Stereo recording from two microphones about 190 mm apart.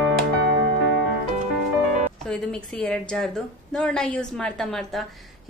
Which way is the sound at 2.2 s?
5° left (ahead or behind).